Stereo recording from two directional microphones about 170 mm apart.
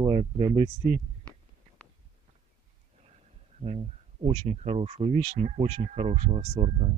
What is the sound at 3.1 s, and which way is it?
Speech, 40° right (ahead or behind).